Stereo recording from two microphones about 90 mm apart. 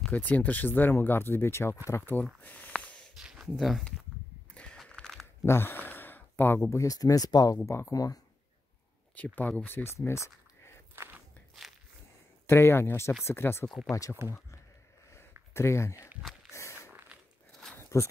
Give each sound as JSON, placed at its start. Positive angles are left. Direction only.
{"t": 0.1, "sound": "speech", "side_deg": 15}
{"t": 2.4, "sound": "a sound", "side_deg": 20}
{"t": 3.2, "sound": "a sound", "side_deg": -5}
{"t": 4.6, "sound": "crushing", "side_deg": 10}
{"t": 5.4, "sound": "speech", "side_deg": 25}
{"t": 9.1, "sound": "speech", "side_deg": 15}
{"t": 9.9, "sound": "a sound", "side_deg": 30}
{"t": 11.0, "sound": "walk", "side_deg": -20}
{"t": 12.4, "sound": "speech", "side_deg": 25}
{"t": 13.7, "sound": "speech", "side_deg": 5}
{"t": 15.5, "sound": "speech", "side_deg": 30}
{"t": 16.5, "sound": "a sound", "side_deg": 30}